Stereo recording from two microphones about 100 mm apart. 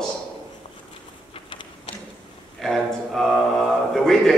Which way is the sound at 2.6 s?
Centre (ahead or behind).